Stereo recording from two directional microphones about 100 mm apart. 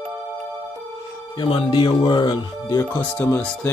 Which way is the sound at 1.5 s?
50° left (ahead or behind).